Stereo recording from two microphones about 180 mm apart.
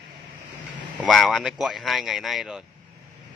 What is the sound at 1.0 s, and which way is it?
Speech, centre (ahead or behind).